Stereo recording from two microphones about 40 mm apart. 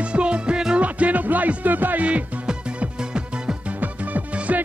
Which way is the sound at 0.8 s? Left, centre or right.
Right.